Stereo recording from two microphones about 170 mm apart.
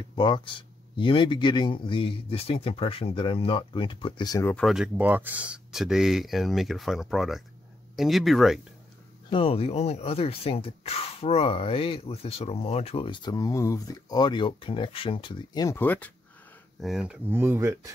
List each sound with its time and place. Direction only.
0.1 s speech: 25° left (ahead or behind)
4.5 s speech: centre (ahead or behind)
9.3 s speech: 35° left (ahead or behind)
15.8 s speech: 10° left (ahead or behind)
16.8 s speech: 5° right (ahead or behind)